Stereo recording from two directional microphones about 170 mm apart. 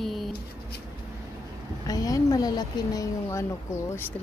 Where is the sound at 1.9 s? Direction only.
20° left (ahead or behind).